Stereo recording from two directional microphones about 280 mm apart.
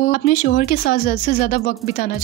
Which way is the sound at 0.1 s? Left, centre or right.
Left.